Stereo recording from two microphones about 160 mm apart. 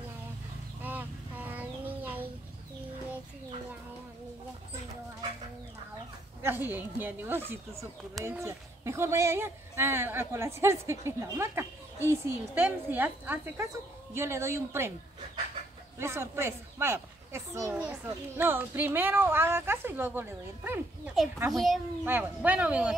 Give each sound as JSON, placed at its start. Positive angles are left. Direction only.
{"t": 0.8, "sound": "a sound", "side_deg": -10}
{"t": 6.4, "sound": "speech", "side_deg": -10}
{"t": 16.0, "sound": "speech", "side_deg": -15}
{"t": 21.5, "sound": "a child's voice", "side_deg": 0}
{"t": 22.0, "sound": "speech", "side_deg": -10}